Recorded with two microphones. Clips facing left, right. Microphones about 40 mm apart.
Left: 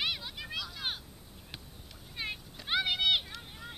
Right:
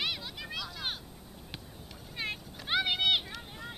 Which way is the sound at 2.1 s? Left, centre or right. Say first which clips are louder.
Right 2 dB; centre.